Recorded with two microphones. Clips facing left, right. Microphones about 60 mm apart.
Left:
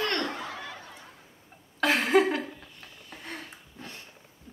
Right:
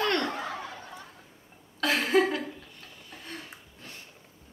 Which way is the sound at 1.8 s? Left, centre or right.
Left.